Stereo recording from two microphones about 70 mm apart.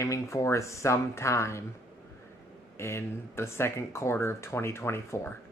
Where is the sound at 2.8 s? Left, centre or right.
Left.